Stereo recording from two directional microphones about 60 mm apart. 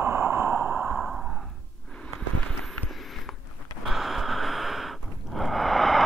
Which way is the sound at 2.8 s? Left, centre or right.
Centre.